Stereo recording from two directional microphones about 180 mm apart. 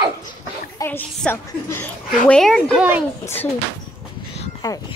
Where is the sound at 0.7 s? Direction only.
10° left (ahead or behind).